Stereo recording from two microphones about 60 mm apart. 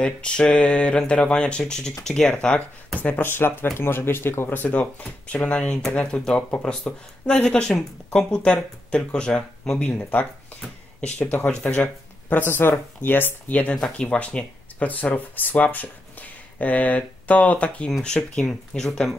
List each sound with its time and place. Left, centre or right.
0.0 s speech: centre
3.0 s speech: left; by 9.8 s centre
9.8 s speech: left
12.4 s speech: left
13.7 s speech: centre